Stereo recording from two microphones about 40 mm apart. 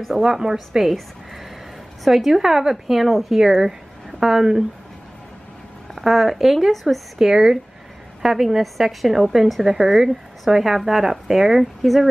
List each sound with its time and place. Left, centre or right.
0.2 s speech: centre
2.0 s speech: centre
5.9 s speech: centre
7.2 s speech: centre